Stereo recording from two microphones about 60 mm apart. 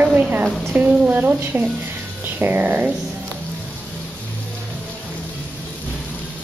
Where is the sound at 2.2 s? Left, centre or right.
Right.